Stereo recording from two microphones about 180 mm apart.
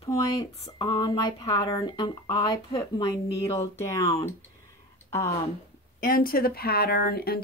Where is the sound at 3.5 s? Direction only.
15° left (ahead or behind).